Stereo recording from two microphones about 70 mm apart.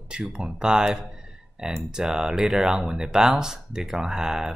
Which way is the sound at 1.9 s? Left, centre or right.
Centre.